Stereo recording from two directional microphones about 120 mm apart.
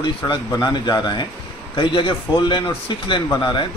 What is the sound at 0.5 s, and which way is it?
A man's voice, 35° left (ahead or behind).